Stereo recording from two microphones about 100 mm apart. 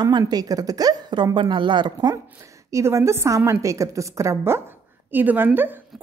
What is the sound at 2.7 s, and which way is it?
A woman's voice, 30° right (ahead or behind).